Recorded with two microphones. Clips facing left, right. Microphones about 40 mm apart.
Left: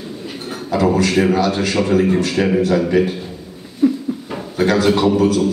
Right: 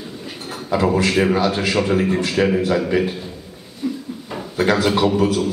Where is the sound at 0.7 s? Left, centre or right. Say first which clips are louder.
Left 2 dB; centre.